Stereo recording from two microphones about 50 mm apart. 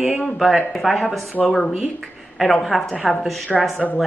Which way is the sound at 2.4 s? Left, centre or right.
Centre.